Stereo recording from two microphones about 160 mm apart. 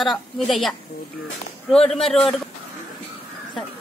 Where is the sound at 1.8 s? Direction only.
40° left (ahead or behind).